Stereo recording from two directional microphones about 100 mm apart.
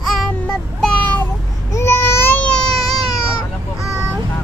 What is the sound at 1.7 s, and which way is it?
Babbling, 30° left (ahead or behind).